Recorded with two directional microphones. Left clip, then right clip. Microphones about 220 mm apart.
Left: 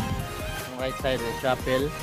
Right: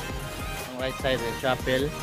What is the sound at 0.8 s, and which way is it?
Speech, 15° left (ahead or behind).